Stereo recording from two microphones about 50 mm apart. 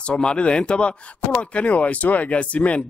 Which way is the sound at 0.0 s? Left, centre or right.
Centre.